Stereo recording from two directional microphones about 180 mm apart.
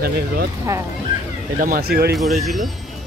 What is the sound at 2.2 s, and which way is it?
Speech, centre (ahead or behind).